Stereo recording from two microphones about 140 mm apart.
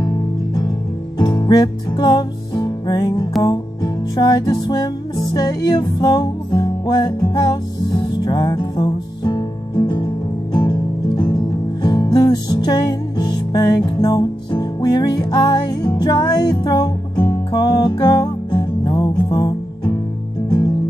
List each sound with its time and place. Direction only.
0.7 s music: 30° left (ahead or behind)